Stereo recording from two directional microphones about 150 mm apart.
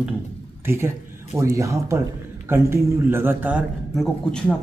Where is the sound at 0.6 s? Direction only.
15° right (ahead or behind).